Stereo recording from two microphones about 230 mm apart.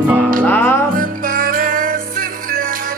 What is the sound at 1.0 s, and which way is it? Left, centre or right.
Music, right.